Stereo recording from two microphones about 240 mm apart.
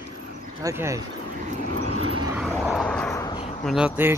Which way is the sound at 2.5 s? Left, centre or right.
Centre.